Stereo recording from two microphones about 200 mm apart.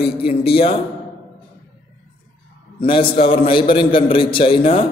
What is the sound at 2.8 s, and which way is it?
A man's voice, 25° left (ahead or behind).